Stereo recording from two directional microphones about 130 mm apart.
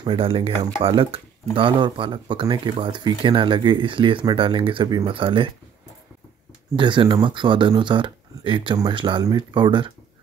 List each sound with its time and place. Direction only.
0.0 s speech: 45° right (ahead or behind)
6.7 s speech: 35° right (ahead or behind)